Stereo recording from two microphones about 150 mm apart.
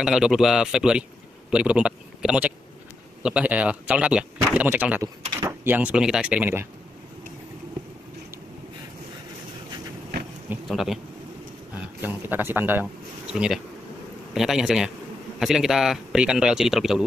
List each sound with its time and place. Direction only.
0.0 s speech: 5° right (ahead or behind)
5.3 s door: 20° right (ahead or behind)
5.7 s speech: 10° right (ahead or behind)
10.7 s speech: centre (ahead or behind)
11.7 s speech: 15° right (ahead or behind)